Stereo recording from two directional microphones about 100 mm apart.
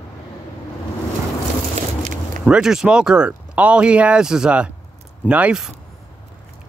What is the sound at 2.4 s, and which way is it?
Speech, 5° right (ahead or behind).